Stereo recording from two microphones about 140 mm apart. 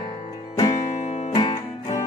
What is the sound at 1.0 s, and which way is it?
Music, 55° left (ahead or behind).